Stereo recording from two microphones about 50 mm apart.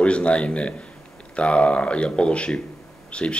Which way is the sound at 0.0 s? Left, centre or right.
Left.